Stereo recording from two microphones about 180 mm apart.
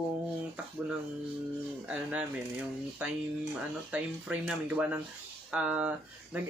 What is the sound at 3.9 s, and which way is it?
Speech, 5° right (ahead or behind).